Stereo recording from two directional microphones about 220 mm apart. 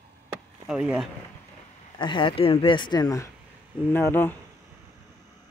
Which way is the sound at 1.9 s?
20° left (ahead or behind).